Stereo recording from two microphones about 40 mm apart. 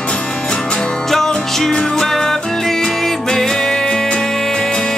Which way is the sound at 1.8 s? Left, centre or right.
Centre.